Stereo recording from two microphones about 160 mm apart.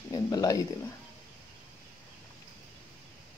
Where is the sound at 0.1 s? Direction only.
25° left (ahead or behind).